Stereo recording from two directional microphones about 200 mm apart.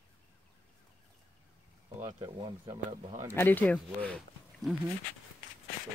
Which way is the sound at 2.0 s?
20° right (ahead or behind).